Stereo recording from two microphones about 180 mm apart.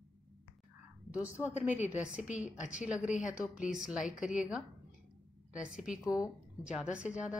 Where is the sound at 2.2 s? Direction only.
40° left (ahead or behind).